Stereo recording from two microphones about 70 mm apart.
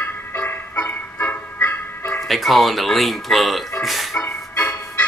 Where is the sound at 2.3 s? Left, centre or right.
Centre.